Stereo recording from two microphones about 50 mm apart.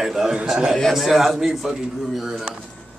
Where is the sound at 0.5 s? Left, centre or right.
Centre.